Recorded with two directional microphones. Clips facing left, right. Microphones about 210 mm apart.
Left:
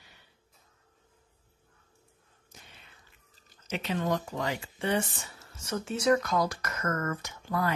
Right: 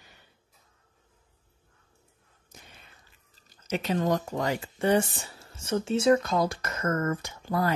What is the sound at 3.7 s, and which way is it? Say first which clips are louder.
Speech: right 4 dB; 40° right (ahead or behind).